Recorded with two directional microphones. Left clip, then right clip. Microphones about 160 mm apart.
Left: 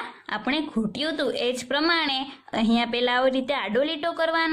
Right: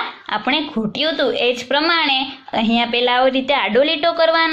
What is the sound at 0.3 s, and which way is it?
A woman's voice, 25° left (ahead or behind).